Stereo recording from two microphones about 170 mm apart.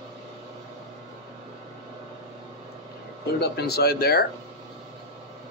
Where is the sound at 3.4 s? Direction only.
70° left (ahead or behind).